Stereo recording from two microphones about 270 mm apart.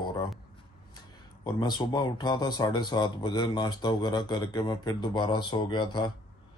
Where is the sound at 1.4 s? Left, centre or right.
Centre.